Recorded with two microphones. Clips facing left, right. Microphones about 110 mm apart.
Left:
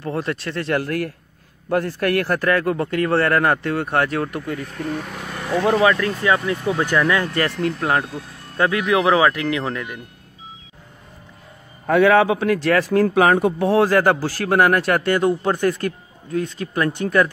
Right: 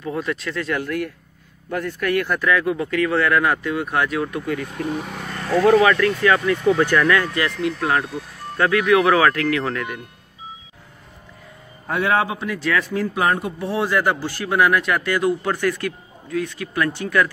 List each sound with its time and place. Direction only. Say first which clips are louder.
0.2 s a man's voice: even; 35° left (ahead or behind)
0.6 s a man's voice: left 4 dB; 45° left (ahead or behind)
2.5 s speech: left 1 dB; 55° left (ahead or behind)
4.7 s speech: right 1 dB; 5° right (ahead or behind)
5.4 s speech: right 4 dB; 20° left (ahead or behind)
5.8 s speech: right 1 dB; 30° left (ahead or behind)
7.3 s speech: left 1 dB; 40° left (ahead or behind); by 9.8 s 15° left (ahead or behind)
11.8 s a man's voice: left 6 dB; 85° left
13.1 s speech: left 3 dB; 90° left
13.8 s a man's voice: left 4 dB; 45° left (ahead or behind)